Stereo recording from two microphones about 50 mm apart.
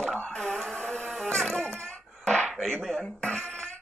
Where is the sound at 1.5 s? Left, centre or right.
Centre.